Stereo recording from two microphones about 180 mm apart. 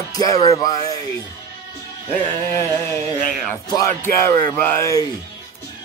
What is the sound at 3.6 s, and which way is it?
Music, 20° left (ahead or behind).